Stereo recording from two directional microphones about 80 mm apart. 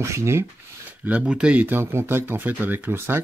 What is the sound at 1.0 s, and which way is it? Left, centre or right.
Speech, centre.